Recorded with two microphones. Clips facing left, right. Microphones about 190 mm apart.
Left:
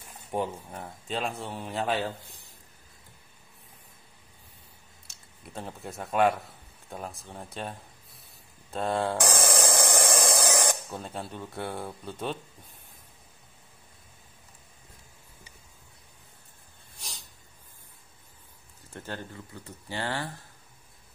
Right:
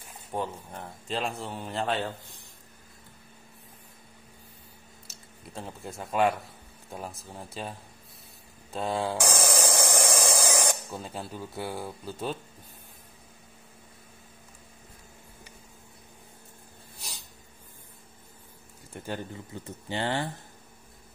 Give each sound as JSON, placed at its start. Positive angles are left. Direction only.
{"t": 0.3, "sound": "speech", "side_deg": 15}
{"t": 0.7, "sound": "speech", "side_deg": 0}
{"t": 5.0, "sound": "speech", "side_deg": 0}
{"t": 8.7, "sound": "a sound", "side_deg": 0}
{"t": 18.9, "sound": "speech", "side_deg": -15}